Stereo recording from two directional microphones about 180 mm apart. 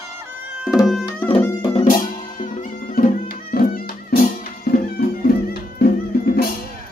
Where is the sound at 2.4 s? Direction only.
50° left (ahead or behind).